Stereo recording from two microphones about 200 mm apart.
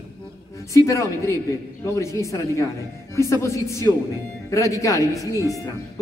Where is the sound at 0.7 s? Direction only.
15° left (ahead or behind).